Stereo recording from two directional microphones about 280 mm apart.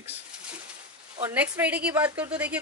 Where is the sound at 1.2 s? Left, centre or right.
Centre.